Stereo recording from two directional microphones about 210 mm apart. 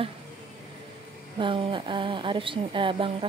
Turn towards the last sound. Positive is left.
turn(degrees=-25)  # may be behind; listen again after turning